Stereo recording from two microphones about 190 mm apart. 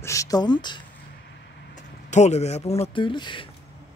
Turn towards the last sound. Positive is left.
turn(degrees=25)  # may be behind; listen again after turning